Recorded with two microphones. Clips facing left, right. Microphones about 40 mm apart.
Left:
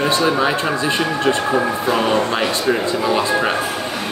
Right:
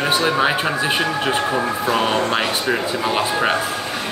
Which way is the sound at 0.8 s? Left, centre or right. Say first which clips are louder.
Left 2 dB; right.